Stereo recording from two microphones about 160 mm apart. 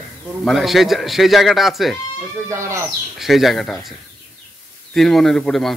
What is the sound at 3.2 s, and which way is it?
Speech, centre (ahead or behind).